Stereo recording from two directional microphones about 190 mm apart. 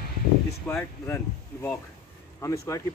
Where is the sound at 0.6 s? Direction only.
15° left (ahead or behind).